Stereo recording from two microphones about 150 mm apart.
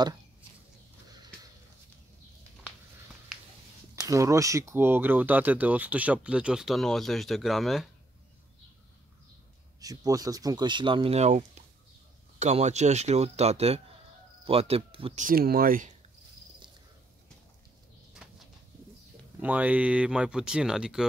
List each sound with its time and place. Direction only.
4.1 s speech: 20° right (ahead or behind); by 7.9 s centre (ahead or behind)
9.8 s speech: 25° right (ahead or behind)
15.1 s speech: 75° right (ahead or behind)
19.4 s speech: 10° right (ahead or behind)